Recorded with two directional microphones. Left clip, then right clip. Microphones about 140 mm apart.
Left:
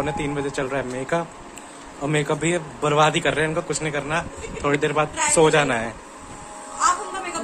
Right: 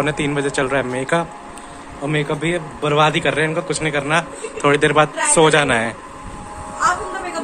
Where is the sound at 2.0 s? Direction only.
35° left (ahead or behind); by 5.9 s 5° left (ahead or behind).